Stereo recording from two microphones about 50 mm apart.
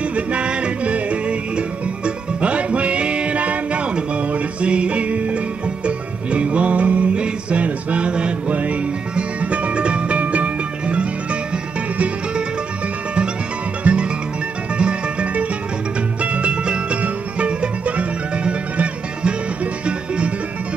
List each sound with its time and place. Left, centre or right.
0.1 s music: right
13.9 s music: right